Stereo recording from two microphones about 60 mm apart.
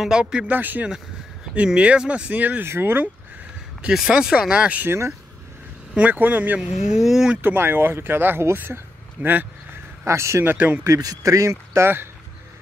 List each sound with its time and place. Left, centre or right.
0.0 s speech: centre
0.5 s speech: right
1.7 s speech: centre
2.6 s speech: right
4.1 s speech: centre
4.8 s speech: right
5.9 s speech: right
6.9 s speech: centre
7.4 s speech: right
10.0 s speech: right
10.4 s speech: right
11.0 s speech: right